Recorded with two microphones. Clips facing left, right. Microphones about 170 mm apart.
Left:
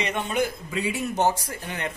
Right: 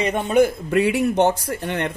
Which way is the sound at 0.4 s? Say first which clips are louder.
Right 12 dB; 65° right (ahead or behind).